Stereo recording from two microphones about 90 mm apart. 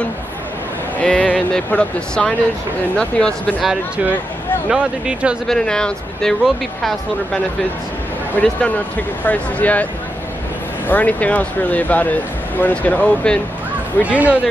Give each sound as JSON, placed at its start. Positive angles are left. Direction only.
{"t": 0.9, "sound": "speech", "side_deg": 15}
{"t": 4.6, "sound": "speech", "side_deg": -10}
{"t": 5.5, "sound": "speech", "side_deg": 5}
{"t": 8.4, "sound": "speech", "side_deg": 15}
{"t": 10.9, "sound": "speech", "side_deg": 15}
{"t": 14.0, "sound": "speech", "side_deg": -15}